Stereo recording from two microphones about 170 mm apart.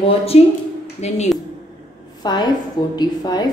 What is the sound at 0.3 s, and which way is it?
Speech, 40° left (ahead or behind).